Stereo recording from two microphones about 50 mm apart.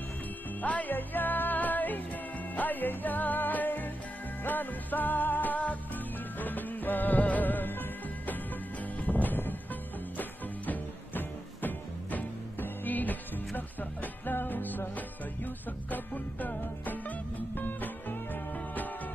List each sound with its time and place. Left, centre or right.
0.6 s music: left
10.7 s music: left